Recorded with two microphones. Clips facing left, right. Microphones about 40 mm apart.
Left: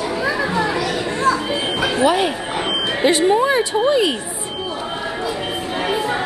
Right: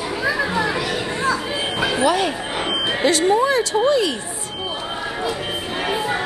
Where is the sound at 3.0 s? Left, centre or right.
Centre.